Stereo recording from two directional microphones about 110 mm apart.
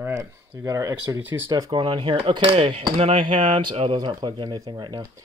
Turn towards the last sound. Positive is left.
turn(degrees=-45)  # may be behind; listen again after turning